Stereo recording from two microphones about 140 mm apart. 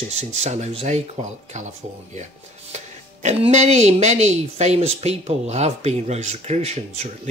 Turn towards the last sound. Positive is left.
turn(degrees=-50)  # may be behind; listen again after turning